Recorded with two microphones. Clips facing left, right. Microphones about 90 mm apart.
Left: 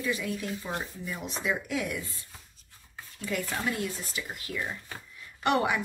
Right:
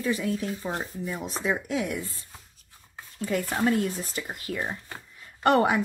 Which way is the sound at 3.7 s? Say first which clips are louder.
Right 7 dB; 45° right (ahead or behind).